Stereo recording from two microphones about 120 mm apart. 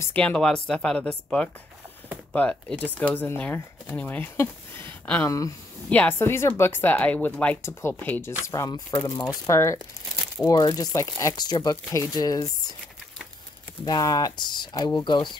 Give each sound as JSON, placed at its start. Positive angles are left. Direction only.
{"t": 0.1, "sound": "speech", "side_deg": 10}
{"t": 13.8, "sound": "speech", "side_deg": 35}
{"t": 14.8, "sound": "speech", "side_deg": 25}
{"t": 15.0, "sound": "speech", "side_deg": 40}